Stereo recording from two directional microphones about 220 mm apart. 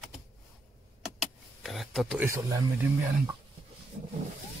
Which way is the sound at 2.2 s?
15° right (ahead or behind).